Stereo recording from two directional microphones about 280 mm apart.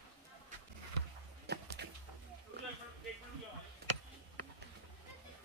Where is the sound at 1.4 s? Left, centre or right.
Right.